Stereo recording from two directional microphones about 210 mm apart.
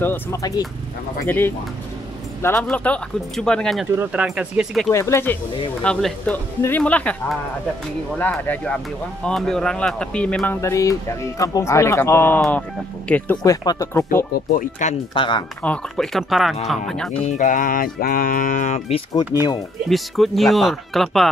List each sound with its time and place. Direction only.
0.0 s speech: 10° left (ahead or behind)
4.9 s speech: 15° left (ahead or behind)
8.2 s speech: 10° left (ahead or behind)
14.5 s speech: 35° left (ahead or behind)
15.6 s speech: 5° left (ahead or behind)
17.3 s speech: 40° left (ahead or behind)
19.9 s speech: centre (ahead or behind)